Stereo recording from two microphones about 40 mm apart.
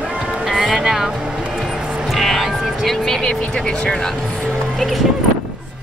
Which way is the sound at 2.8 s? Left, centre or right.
Centre.